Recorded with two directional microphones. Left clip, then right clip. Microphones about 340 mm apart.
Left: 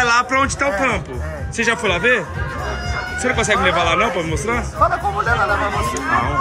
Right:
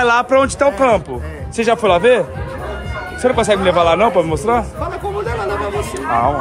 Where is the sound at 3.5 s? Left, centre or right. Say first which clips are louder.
Right 2 dB; centre.